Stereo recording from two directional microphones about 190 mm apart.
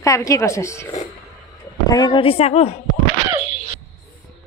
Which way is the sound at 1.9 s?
20° left (ahead or behind).